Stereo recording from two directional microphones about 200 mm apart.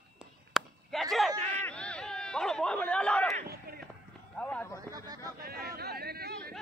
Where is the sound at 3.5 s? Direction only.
50° right (ahead or behind).